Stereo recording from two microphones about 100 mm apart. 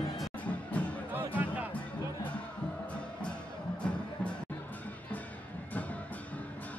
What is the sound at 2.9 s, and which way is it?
Music, 10° left (ahead or behind).